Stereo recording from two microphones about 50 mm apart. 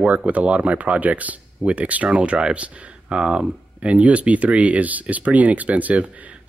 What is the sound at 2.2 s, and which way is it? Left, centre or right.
Speech, centre.